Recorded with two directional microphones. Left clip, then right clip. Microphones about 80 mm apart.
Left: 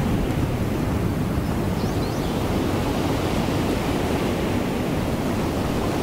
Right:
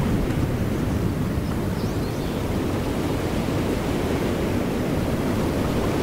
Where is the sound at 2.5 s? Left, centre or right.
Left.